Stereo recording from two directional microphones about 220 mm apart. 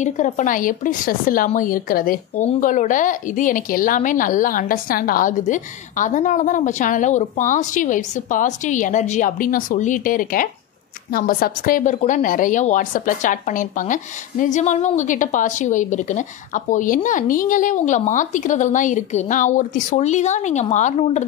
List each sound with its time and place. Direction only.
0.0 s speech: 35° left (ahead or behind)